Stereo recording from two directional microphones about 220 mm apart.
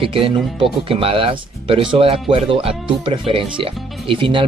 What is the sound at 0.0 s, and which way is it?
Speech, 25° right (ahead or behind).